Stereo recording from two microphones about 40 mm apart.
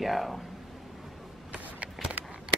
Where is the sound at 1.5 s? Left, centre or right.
Right.